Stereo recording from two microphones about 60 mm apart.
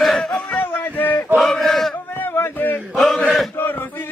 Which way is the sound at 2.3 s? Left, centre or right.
Left.